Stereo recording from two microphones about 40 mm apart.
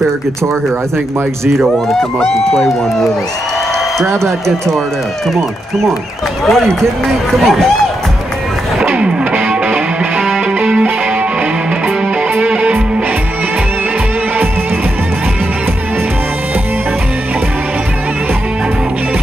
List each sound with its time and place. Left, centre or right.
6.5 s speech: centre
9.0 s music: right
12.4 s music: right